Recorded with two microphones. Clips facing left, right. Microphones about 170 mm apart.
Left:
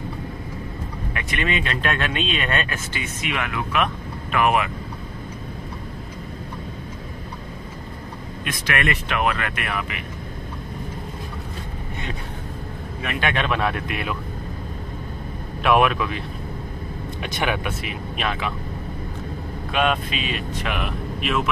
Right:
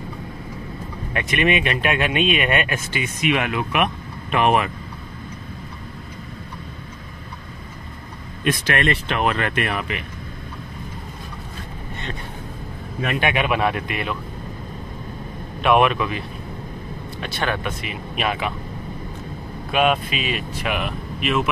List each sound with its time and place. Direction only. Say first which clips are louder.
1.1 s speech: right 6 dB; 20° right (ahead or behind)
8.5 s speech: right 4 dB; 30° right (ahead or behind)
13.2 s speech: right 2 dB; 10° right (ahead or behind)
15.6 s speech: right 1 dB; centre (ahead or behind)
17.2 s speech: even; 15° left (ahead or behind)
17.8 s speech: right 2 dB; 10° right (ahead or behind)
19.7 s speech: right 3 dB; 5° right (ahead or behind)